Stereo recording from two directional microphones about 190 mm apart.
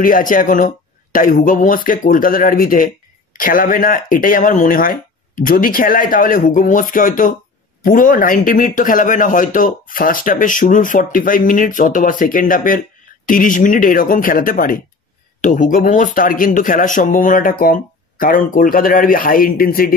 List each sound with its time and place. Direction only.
0.0 s speech: 45° left (ahead or behind)